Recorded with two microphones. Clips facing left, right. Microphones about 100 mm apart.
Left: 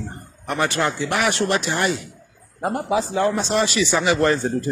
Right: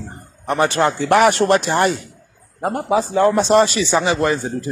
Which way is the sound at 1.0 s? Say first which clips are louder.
Right 8 dB; 45° right (ahead or behind).